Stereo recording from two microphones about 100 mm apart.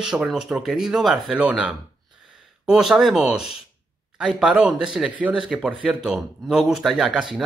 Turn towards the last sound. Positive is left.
turn(degrees=-5)  # may be behind; listen again after turning